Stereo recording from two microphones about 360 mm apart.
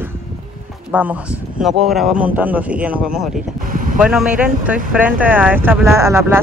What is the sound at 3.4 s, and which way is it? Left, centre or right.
Speech, right.